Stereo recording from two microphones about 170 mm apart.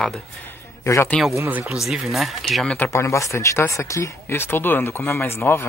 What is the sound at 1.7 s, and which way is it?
Speech, centre (ahead or behind).